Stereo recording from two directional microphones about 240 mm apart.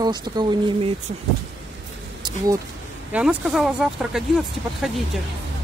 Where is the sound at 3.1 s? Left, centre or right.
Centre.